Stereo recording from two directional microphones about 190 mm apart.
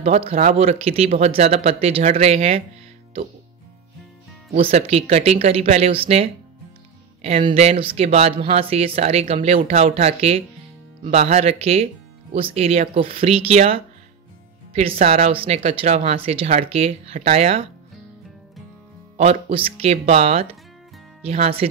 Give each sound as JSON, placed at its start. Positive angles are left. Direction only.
{"t": 0.0, "sound": "speech", "side_deg": -35}
{"t": 4.6, "sound": "speech", "side_deg": -30}
{"t": 15.0, "sound": "speech", "side_deg": -35}
{"t": 19.1, "sound": "speech", "side_deg": -30}